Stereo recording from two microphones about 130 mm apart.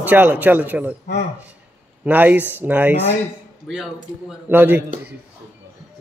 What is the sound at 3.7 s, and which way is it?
Speech, 5° right (ahead or behind).